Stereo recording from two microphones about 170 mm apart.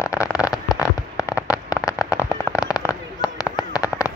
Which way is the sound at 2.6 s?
20° left (ahead or behind).